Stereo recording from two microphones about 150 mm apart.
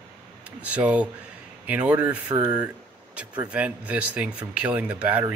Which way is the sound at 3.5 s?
10° right (ahead or behind).